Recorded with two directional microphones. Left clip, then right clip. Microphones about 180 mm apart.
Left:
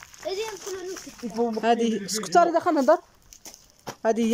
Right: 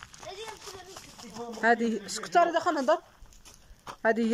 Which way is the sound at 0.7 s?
40° left (ahead or behind).